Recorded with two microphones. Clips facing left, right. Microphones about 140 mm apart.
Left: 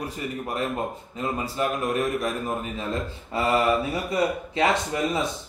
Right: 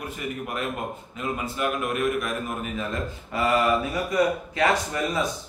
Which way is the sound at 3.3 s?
30° left (ahead or behind).